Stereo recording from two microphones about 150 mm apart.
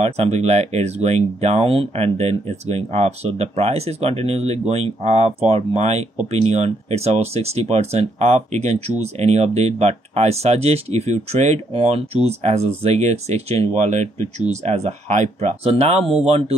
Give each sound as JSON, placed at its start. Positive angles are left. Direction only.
{"t": 0.0, "sound": "speech", "side_deg": -45}